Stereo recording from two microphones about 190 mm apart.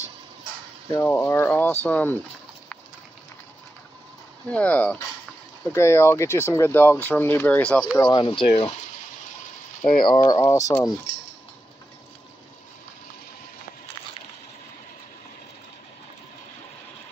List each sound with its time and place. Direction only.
0.9 s speech: 10° left (ahead or behind)
4.5 s speech: 5° left (ahead or behind)
8.0 s speech: 25° left (ahead or behind)
9.8 s speech: 25° left (ahead or behind)